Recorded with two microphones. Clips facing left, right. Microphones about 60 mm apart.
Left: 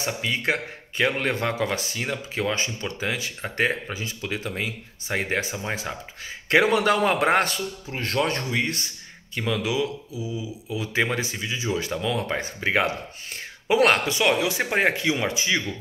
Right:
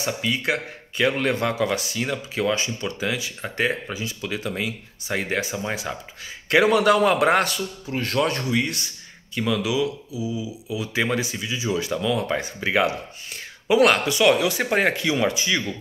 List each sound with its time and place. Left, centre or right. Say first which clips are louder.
0.0 s a man's voice: right 1 dB; left